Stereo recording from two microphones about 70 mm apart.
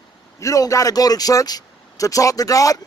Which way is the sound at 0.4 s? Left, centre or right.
Left.